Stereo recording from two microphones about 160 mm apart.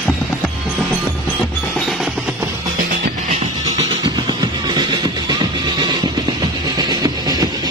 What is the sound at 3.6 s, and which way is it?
Music, 20° right (ahead or behind).